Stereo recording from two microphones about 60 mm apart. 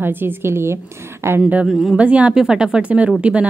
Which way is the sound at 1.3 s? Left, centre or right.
Right.